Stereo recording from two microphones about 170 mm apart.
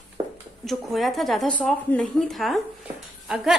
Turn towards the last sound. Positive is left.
turn(degrees=-5)  # may be behind; listen again after turning